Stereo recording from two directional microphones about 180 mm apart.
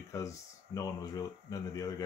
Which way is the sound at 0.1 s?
15° left (ahead or behind).